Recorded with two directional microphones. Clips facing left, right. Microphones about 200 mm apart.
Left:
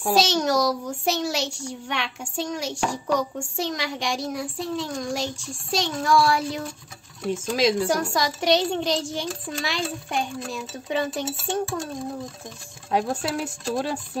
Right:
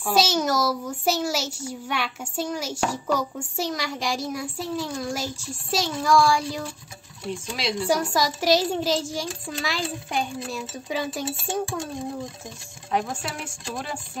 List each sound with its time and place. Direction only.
0.1 s a child's voice: centre (ahead or behind)
7.8 s a child's voice: centre (ahead or behind)
12.9 s speech: 35° left (ahead or behind)